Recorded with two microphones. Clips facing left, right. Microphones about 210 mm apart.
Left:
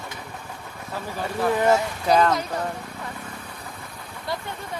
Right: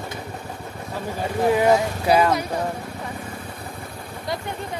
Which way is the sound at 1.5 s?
10° right (ahead or behind).